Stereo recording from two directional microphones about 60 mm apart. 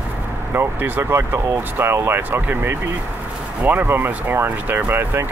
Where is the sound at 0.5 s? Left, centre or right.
Right.